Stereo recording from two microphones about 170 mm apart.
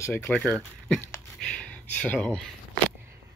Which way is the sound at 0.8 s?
5° left (ahead or behind).